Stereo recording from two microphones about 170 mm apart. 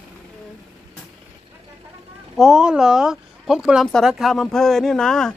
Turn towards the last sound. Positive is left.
turn(degrees=5)  # may be behind; listen again after turning